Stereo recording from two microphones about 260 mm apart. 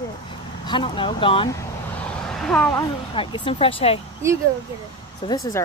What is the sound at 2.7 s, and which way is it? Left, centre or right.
Speech, centre.